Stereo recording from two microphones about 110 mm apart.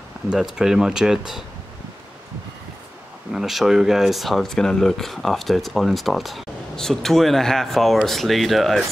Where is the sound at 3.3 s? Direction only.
Centre (ahead or behind).